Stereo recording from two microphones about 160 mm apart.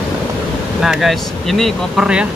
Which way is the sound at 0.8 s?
Centre (ahead or behind).